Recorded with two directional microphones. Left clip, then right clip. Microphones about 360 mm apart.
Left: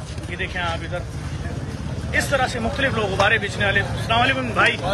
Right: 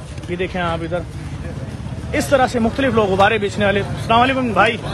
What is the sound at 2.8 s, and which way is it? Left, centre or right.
Speech, centre.